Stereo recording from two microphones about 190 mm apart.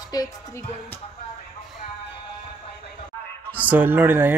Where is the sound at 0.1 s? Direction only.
20° left (ahead or behind).